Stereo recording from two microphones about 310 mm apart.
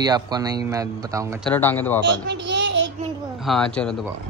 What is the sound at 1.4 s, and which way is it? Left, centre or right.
Speech, centre.